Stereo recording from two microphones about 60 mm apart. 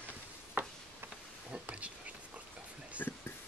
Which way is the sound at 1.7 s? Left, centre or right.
Right.